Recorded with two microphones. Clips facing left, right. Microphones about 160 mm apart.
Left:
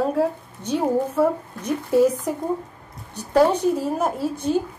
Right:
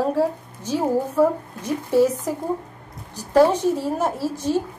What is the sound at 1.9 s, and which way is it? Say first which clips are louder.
Speech: even; centre (ahead or behind).